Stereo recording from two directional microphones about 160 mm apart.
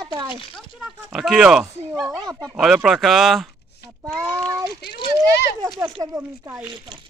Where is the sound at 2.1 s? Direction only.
20° right (ahead or behind).